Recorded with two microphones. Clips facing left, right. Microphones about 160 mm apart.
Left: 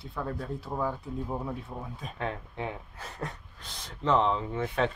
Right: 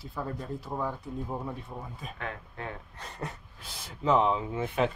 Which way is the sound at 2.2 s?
30° left (ahead or behind).